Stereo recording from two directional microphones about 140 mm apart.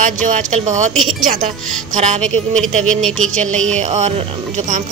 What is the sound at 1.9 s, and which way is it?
Speech, 55° right (ahead or behind).